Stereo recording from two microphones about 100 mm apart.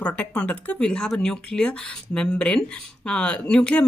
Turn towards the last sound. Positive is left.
turn(degrees=10)  # may be behind; listen again after turning